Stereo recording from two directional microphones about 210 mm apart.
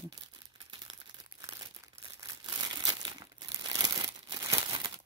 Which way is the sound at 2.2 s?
25° right (ahead or behind).